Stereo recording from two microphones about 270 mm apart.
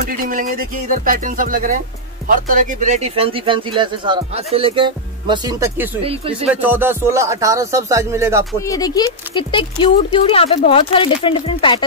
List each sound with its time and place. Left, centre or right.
0.0 s speech: right; by 8.5 s centre
8.6 s speech: centre